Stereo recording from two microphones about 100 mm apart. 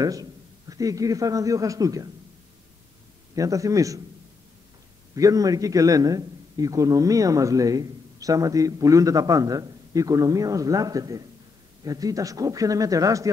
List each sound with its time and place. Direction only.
0.0 s a man's voice: 40° right (ahead or behind)
3.3 s a man's voice: 35° right (ahead or behind)
5.1 s a man's voice: 35° right (ahead or behind)